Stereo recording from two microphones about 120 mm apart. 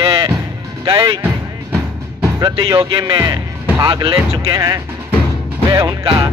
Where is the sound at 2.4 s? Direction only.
40° right (ahead or behind).